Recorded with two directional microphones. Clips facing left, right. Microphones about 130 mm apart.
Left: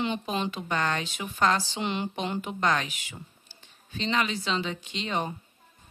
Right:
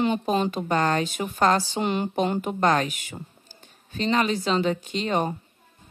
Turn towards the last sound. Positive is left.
turn(degrees=-45)  # may be behind; listen again after turning